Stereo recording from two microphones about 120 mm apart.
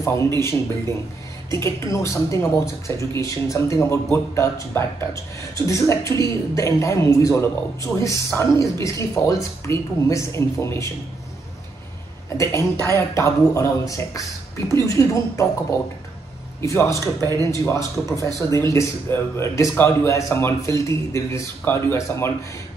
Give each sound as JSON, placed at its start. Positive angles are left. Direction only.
{"t": 0.0, "sound": "a woman's voice", "side_deg": 20}
{"t": 12.8, "sound": "a woman's voice", "side_deg": 25}
{"t": 16.6, "sound": "a woman's voice", "side_deg": 25}